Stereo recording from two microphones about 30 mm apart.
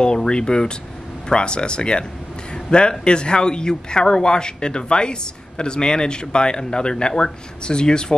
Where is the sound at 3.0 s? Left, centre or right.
Left.